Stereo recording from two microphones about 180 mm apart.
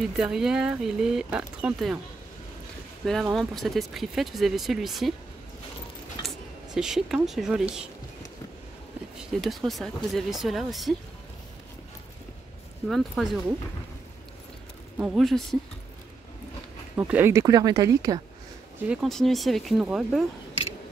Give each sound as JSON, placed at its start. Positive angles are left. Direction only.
{"t": 0.1, "sound": "speech", "side_deg": -5}
{"t": 3.3, "sound": "speech", "side_deg": 0}
{"t": 6.2, "sound": "speech", "side_deg": -5}
{"t": 9.4, "sound": "speech", "side_deg": 0}
{"t": 12.8, "sound": "speech", "side_deg": 0}
{"t": 15.0, "sound": "speech", "side_deg": -5}
{"t": 16.9, "sound": "speech", "side_deg": -15}
{"t": 18.9, "sound": "speech", "side_deg": 0}